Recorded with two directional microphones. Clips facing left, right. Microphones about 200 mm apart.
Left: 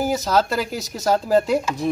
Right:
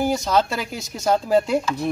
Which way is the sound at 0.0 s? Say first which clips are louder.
Even; 5° left (ahead or behind).